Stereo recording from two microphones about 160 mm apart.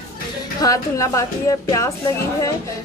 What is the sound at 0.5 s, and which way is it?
A woman's voice, 20° left (ahead or behind).